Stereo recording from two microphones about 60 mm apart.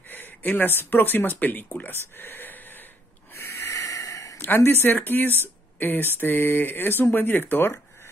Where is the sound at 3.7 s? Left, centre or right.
Left.